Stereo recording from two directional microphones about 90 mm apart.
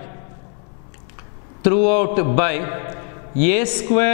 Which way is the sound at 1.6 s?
10° left (ahead or behind).